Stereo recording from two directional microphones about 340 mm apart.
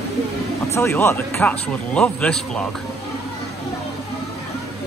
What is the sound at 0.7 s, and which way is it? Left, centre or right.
Speech, centre.